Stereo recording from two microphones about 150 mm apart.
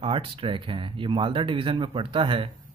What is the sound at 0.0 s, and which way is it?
Speech, 35° right (ahead or behind).